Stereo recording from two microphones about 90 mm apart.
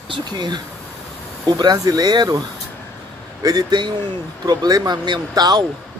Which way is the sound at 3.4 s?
50° right (ahead or behind).